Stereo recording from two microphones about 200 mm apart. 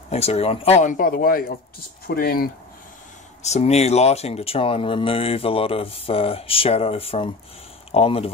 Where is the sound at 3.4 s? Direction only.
30° left (ahead or behind).